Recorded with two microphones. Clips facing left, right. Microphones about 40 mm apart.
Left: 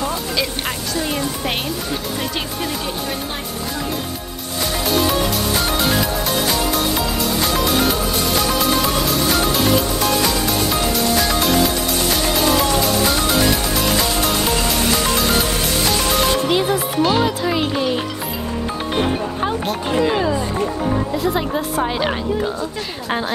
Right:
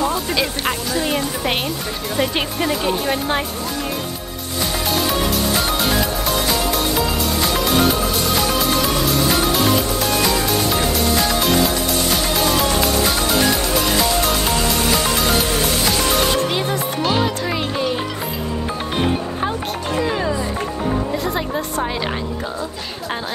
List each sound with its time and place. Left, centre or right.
0.1 s music: centre
2.3 s speech: right
5.6 s music: centre
12.4 s music: centre
16.4 s music: centre
20.1 s a woman's voice: centre